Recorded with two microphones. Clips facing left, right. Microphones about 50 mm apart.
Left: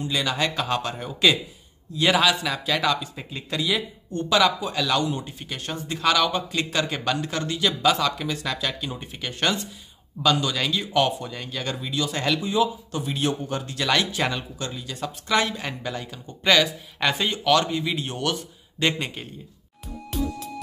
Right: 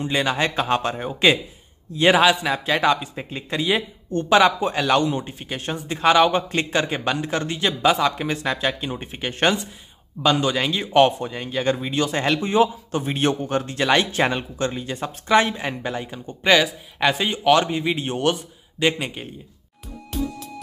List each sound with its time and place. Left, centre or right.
0.0 s a man's voice: right
12.4 s a man's voice: right; by 17.4 s centre
17.4 s speech: right
18.3 s speech: centre